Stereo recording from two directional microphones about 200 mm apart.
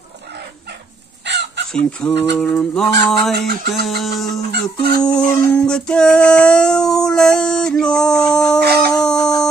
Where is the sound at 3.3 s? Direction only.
55° right (ahead or behind).